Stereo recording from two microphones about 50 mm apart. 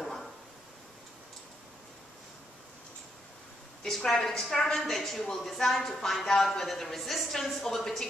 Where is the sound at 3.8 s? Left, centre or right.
Centre.